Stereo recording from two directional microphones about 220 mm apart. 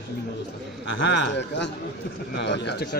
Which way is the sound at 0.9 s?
55° left (ahead or behind).